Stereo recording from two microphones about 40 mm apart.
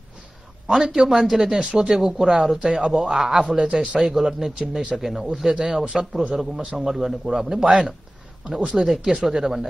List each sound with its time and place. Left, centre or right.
0.7 s a man's voice: centre
1.0 s a woman's voice: centre
3.5 s a man's voice: right
4.1 s a woman's voice: centre
7.6 s a man's voice: right
8.6 s a woman's voice: centre